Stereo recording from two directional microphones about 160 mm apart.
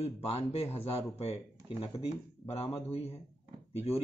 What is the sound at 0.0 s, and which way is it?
Speech, 40° left (ahead or behind).